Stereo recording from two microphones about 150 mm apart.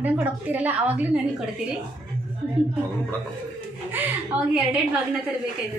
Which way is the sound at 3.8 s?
15° right (ahead or behind).